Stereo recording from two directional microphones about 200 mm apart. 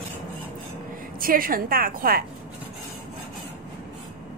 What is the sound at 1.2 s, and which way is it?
A woman's voice, 45° right (ahead or behind).